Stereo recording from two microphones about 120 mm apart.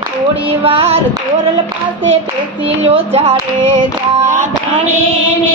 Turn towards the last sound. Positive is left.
turn(degrees=-25)  # may be behind; listen again after turning